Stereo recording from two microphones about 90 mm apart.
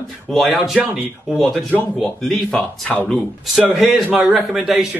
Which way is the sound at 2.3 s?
10° left (ahead or behind).